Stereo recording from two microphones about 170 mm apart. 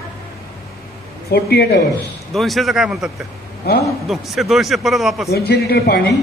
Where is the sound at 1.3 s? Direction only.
70° left (ahead or behind).